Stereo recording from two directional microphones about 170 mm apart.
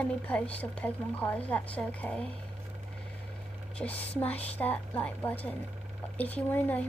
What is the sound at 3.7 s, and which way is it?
Speech, 10° left (ahead or behind).